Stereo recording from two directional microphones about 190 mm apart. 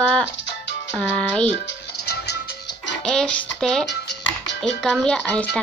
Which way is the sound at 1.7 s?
60° left (ahead or behind).